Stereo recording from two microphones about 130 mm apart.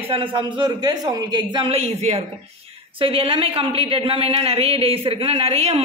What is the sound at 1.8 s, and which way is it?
Speech, 55° right (ahead or behind).